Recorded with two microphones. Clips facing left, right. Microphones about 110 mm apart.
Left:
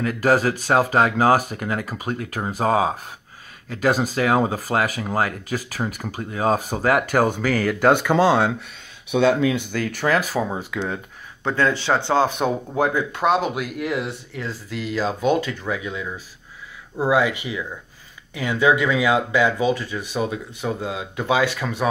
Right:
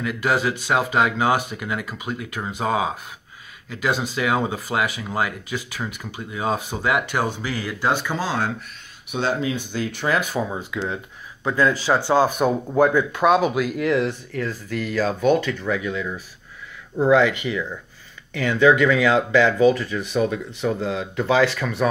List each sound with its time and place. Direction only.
0.0 s speech: 40° left (ahead or behind); by 8.5 s 65° left (ahead or behind)
9.1 s speech: 85° left
9.7 s speech: 50° left (ahead or behind); by 21.8 s 20° left (ahead or behind)